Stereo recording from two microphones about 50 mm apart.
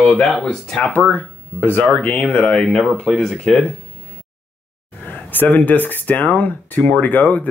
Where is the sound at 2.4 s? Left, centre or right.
Centre.